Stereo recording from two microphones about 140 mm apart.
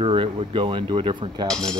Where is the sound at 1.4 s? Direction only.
5° left (ahead or behind).